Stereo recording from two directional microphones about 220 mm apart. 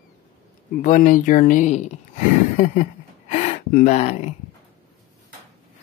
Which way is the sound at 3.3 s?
30° left (ahead or behind).